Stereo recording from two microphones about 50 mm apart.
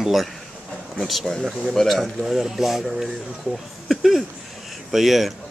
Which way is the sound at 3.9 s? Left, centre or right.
Centre.